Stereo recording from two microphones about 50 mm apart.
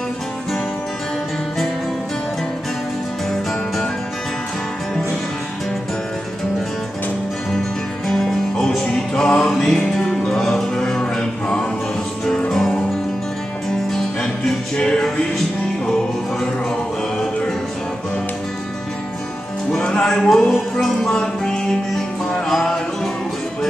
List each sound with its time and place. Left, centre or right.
8.1 s music: centre
20.0 s music: centre